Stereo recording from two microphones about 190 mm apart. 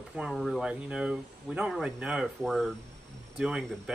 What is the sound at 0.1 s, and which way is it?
Speech, 5° right (ahead or behind).